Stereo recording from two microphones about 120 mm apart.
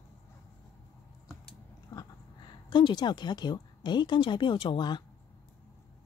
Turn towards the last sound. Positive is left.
turn(degrees=40)  # may be behind; listen again after turning